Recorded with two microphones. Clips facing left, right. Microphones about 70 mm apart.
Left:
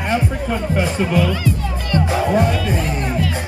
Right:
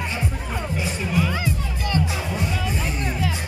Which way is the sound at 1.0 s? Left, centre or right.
Left.